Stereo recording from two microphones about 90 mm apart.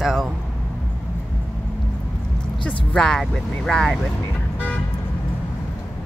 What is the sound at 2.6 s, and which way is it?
Speech, 10° left (ahead or behind).